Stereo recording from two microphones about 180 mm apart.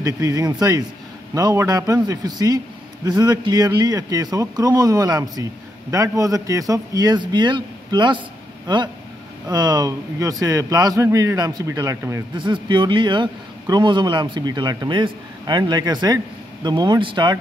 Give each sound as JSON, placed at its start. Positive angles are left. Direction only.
{"t": 0.0, "sound": "a man's voice", "side_deg": -20}